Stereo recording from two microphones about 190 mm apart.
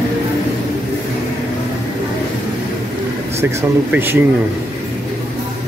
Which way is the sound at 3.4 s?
10° right (ahead or behind).